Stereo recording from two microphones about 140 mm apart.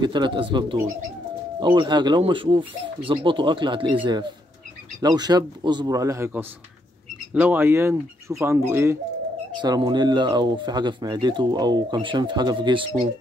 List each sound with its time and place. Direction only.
0.0 s speech: 35° right (ahead or behind)
9.6 s speech: 30° right (ahead or behind)